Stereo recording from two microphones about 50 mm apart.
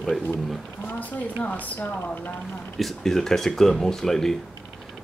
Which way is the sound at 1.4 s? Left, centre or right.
Left.